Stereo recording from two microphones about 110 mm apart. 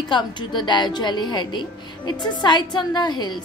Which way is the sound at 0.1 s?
45° left (ahead or behind).